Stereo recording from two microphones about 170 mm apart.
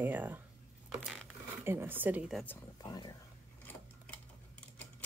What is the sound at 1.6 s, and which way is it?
Speech, 15° right (ahead or behind).